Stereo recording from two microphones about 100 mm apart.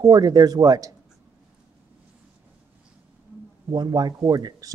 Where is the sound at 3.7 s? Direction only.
45° right (ahead or behind).